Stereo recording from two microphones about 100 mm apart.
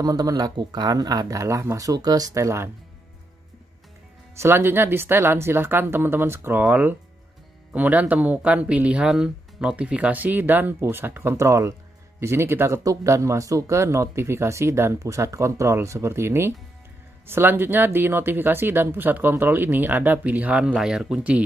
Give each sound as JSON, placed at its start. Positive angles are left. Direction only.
{"t": 0.0, "sound": "speech", "side_deg": -40}
{"t": 4.4, "sound": "speech", "side_deg": -20}